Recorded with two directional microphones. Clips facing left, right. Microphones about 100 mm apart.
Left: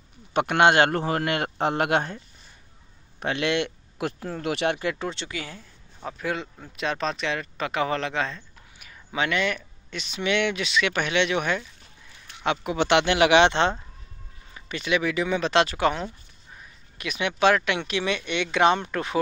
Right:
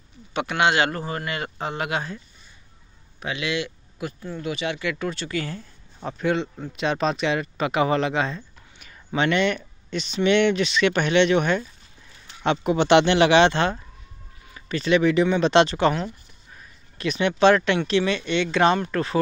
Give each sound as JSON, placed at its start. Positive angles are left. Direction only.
{"t": 0.3, "sound": "a man's voice", "side_deg": 50}
{"t": 3.2, "sound": "speech", "side_deg": 55}
{"t": 4.7, "sound": "speech", "side_deg": 35}
{"t": 5.0, "sound": "speech", "side_deg": 20}
{"t": 5.9, "sound": "speech", "side_deg": 0}
{"t": 8.7, "sound": "a sound", "side_deg": 5}
{"t": 9.9, "sound": "speech", "side_deg": 5}